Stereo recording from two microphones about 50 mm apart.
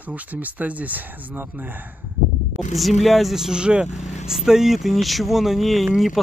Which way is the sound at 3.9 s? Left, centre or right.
Centre.